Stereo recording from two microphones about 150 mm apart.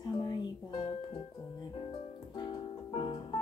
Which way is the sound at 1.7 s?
30° left (ahead or behind).